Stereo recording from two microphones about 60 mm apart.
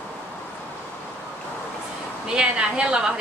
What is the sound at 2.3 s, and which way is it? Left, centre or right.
Speech, centre.